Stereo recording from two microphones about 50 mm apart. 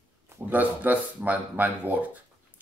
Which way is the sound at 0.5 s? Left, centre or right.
Right.